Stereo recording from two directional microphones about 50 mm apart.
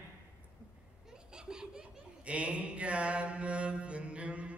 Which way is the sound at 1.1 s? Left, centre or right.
Centre.